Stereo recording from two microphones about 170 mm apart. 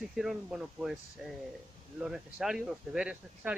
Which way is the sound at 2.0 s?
5° right (ahead or behind).